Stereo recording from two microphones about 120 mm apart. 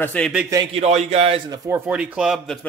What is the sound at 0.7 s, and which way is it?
Speech, 65° right (ahead or behind).